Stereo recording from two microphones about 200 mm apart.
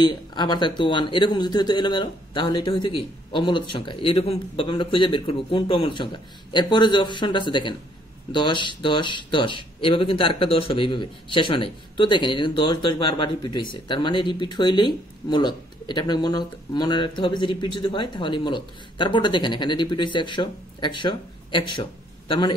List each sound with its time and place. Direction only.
0.0 s speech: 20° left (ahead or behind)